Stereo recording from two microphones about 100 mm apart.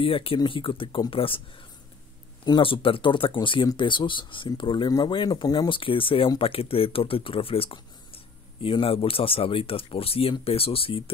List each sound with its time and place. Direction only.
0.0 s speech: 65° left (ahead or behind)
2.6 s speech: 60° left (ahead or behind); by 5.8 s 45° left (ahead or behind)
5.8 s speech: 60° left (ahead or behind)